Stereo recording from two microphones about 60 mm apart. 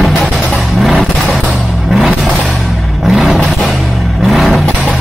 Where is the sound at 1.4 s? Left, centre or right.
Centre.